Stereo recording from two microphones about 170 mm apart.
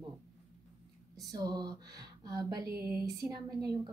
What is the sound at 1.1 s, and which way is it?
A woman's voice, 20° right (ahead or behind).